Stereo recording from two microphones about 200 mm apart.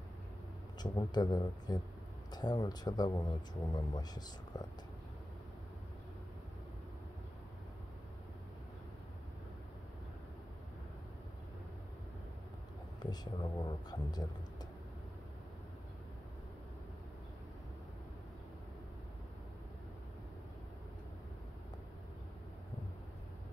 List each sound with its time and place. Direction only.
0.7 s speech: 20° left (ahead or behind)
13.0 s speech: 20° left (ahead or behind)